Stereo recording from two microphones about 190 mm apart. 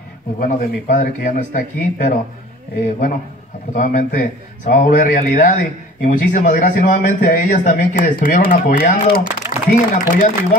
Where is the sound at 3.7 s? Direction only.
45° left (ahead or behind).